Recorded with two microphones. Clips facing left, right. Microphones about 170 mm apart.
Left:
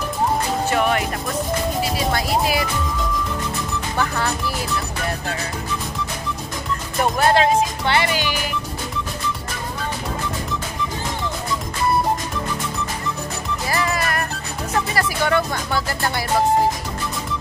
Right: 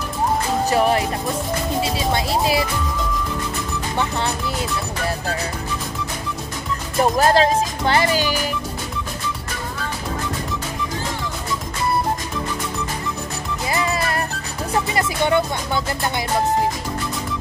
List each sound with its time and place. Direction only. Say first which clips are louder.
0.7 s speech: right 3 dB; 35° right (ahead or behind)
3.9 s speech: even; 25° right (ahead or behind)
7.0 s speech: right 2 dB; 35° right (ahead or behind)
13.7 s music: right 1 dB; 20° right (ahead or behind)
15.0 s speech: right 1 dB; 20° right (ahead or behind)